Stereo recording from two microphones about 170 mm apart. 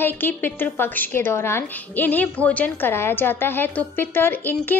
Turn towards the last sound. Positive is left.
turn(degrees=10)  # may be behind; listen again after turning